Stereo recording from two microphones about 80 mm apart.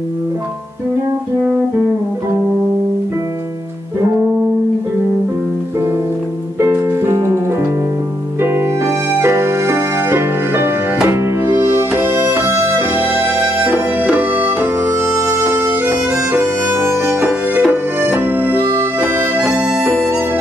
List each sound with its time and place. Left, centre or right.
6.6 s music: right
8.4 s music: right
15.5 s bagpipes: right
16.7 s music: right
17.2 s music: centre
18.0 s harmonica: right